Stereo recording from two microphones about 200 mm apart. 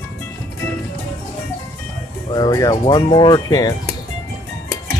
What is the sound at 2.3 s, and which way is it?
Speech, 20° left (ahead or behind).